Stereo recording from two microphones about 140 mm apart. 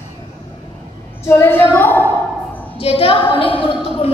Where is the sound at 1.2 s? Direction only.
15° left (ahead or behind).